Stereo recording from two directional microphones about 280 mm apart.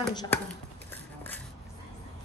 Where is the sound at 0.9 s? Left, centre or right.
Centre.